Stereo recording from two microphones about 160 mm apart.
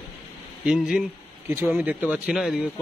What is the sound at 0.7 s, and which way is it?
A man's voice, 5° right (ahead or behind).